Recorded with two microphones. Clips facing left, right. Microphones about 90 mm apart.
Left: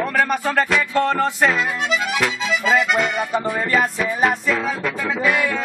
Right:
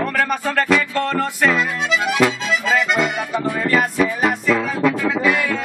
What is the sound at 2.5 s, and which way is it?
Accordion, 5° left (ahead or behind).